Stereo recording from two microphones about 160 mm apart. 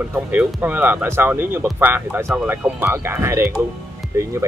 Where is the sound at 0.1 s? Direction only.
10° right (ahead or behind).